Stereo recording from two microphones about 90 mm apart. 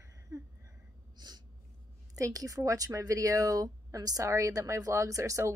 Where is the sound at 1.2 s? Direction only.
50° right (ahead or behind).